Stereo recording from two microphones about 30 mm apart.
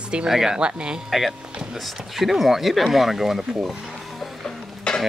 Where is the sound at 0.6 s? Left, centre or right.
Right.